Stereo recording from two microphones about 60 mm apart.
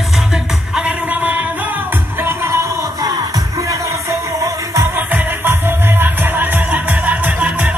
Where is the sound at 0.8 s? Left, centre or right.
Right.